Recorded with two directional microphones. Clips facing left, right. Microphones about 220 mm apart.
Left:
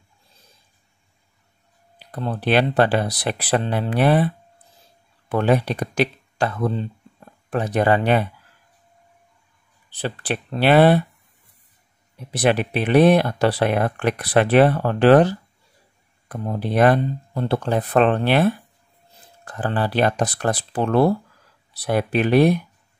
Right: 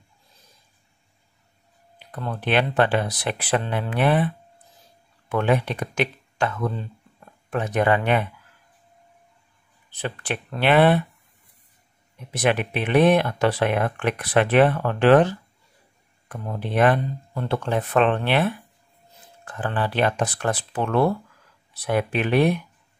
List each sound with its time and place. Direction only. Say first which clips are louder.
2.0 s speech: left 4 dB; 35° left (ahead or behind)
5.3 s speech: left 3 dB; 35° left (ahead or behind)
9.8 s speech: left 3 dB; 35° left (ahead or behind)
12.3 s speech: left 3 dB; 35° left (ahead or behind)